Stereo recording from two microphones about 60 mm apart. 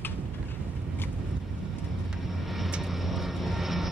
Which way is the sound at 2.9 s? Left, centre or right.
Centre.